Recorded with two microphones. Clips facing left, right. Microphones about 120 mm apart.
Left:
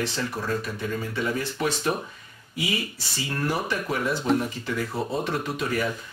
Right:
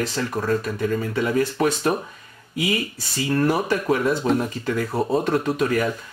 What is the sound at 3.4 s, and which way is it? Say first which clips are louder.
Speech: right 6 dB; 45° right (ahead or behind).